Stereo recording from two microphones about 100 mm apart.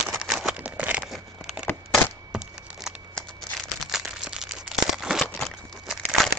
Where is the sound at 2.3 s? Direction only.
5° right (ahead or behind).